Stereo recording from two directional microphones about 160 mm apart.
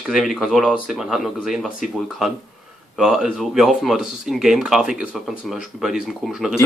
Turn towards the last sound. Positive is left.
turn(degrees=-5)  # may be behind; listen again after turning